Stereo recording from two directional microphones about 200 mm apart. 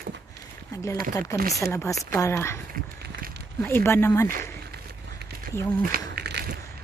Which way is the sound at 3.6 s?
10° left (ahead or behind).